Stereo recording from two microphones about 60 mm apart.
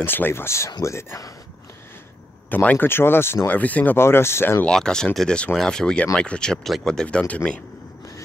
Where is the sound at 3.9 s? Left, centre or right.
Left.